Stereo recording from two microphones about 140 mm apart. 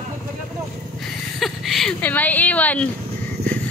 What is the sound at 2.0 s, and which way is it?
Speech, 10° left (ahead or behind).